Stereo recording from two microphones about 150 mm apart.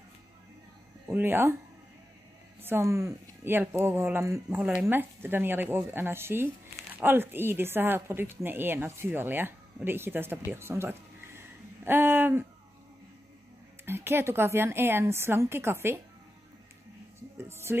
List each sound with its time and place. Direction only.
1.0 s speech: 15° right (ahead or behind)
2.6 s speech: 15° right (ahead or behind)
10.5 s a sound: 15° right (ahead or behind)
13.8 s speech: 15° right (ahead or behind)
17.4 s speech: 15° right (ahead or behind)